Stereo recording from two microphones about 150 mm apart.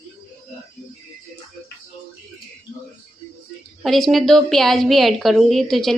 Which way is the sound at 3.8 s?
Centre (ahead or behind).